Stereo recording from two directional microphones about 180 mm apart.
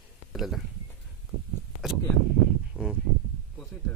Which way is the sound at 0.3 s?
Centre (ahead or behind).